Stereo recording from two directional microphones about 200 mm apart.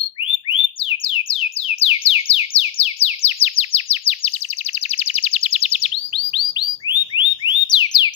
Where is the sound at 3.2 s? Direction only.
30° left (ahead or behind).